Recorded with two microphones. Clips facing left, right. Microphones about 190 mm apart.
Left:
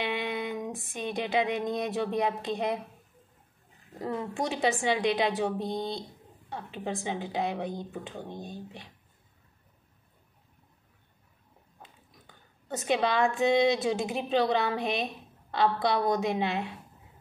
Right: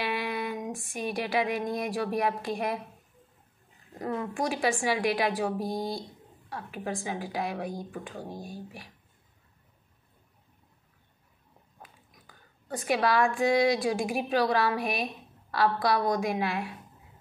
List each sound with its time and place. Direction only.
0.0 s a sound: 20° left (ahead or behind)
4.0 s a woman's voice: 25° left (ahead or behind)
11.8 s a woman's voice: 25° left (ahead or behind)